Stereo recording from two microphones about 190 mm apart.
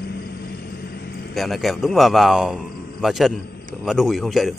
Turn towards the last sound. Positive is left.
turn(degrees=0)  # may be behind; listen again after turning